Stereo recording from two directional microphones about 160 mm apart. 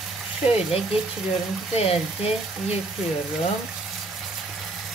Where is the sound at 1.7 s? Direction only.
40° left (ahead or behind).